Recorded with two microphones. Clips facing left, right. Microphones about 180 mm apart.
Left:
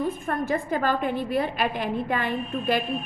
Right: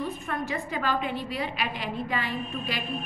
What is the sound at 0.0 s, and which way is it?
A woman's voice, 50° left (ahead or behind).